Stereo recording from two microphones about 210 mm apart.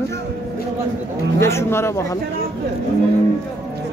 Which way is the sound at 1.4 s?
10° left (ahead or behind).